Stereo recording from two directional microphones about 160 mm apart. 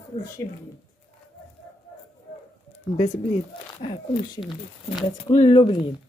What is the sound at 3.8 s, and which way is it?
Speech, 30° left (ahead or behind).